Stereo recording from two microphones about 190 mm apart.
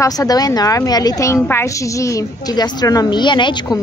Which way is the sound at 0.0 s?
20° left (ahead or behind).